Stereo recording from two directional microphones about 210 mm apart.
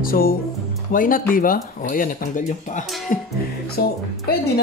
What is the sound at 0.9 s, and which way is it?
Speech, 40° left (ahead or behind).